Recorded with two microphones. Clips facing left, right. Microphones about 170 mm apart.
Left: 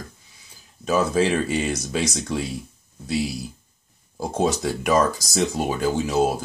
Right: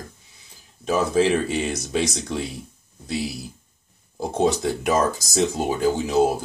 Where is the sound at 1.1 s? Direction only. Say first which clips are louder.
Right 1 dB; 20° right (ahead or behind).